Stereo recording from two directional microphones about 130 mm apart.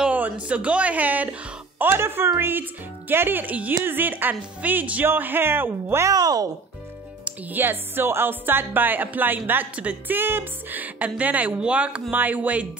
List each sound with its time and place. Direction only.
0.0 s speech: 10° right (ahead or behind); by 6.5 s 30° right (ahead or behind)
7.2 s speech: 15° right (ahead or behind)